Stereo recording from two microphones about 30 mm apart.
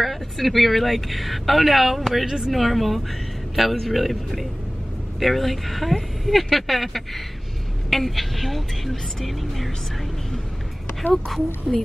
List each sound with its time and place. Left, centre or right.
0.0 s speech: centre
2.2 s speech: right
2.5 s speech: centre
11.2 s speech: centre